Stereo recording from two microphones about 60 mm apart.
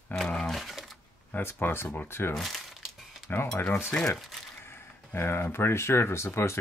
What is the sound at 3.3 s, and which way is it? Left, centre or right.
Speech, left.